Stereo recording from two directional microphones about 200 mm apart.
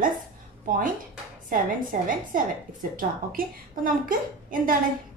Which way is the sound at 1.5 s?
45° right (ahead or behind).